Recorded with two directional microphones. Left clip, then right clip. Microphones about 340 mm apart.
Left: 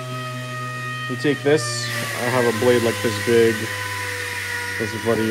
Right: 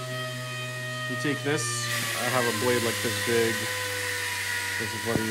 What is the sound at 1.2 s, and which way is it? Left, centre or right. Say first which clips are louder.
Speech: left 11 dB; centre.